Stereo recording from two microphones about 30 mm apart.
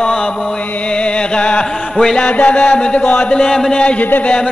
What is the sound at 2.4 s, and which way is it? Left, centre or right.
Music, left.